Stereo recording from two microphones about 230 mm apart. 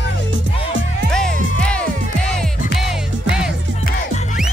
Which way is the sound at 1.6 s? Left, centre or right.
Centre.